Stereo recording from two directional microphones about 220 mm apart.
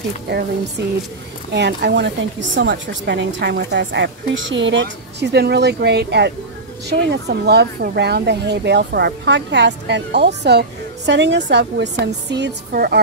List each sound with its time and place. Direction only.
0.8 s a woman's voice: 50° right (ahead or behind)